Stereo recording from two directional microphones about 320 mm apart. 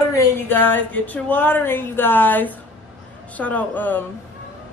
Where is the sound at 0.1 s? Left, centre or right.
Centre.